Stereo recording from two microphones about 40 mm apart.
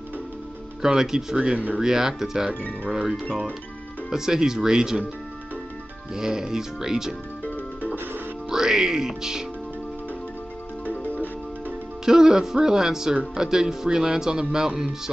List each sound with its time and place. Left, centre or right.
0.8 s speech: centre
1.3 s speech: right
6.1 s speech: centre
8.5 s speech: centre
10.9 s music: left
12.0 s speech: centre